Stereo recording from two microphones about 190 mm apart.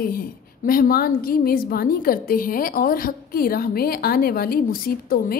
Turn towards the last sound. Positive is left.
turn(degrees=50)  # may be behind; listen again after turning